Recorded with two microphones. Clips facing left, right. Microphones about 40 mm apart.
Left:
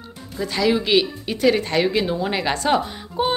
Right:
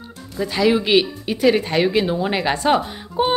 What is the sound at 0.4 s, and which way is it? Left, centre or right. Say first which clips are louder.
Speech: right 2 dB; centre.